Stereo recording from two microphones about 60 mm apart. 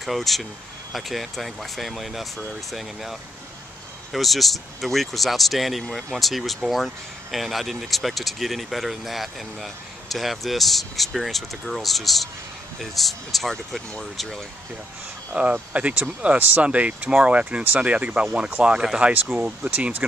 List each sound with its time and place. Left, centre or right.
0.0 s speech: centre
5.9 s speech: centre
6.1 s speech: centre
15.3 s speech: right